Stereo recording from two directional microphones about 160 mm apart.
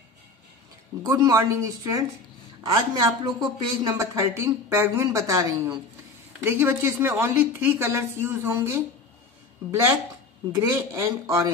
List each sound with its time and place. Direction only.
1.0 s a woman's voice: 25° right (ahead or behind)
10.5 s speech: 25° right (ahead or behind)